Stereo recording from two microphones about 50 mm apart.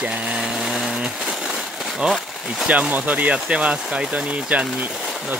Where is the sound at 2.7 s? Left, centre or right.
Right.